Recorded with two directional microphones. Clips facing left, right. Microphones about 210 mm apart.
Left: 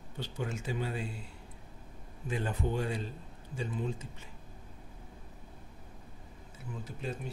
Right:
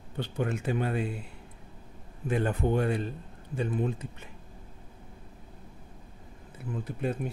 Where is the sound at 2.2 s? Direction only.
55° right (ahead or behind).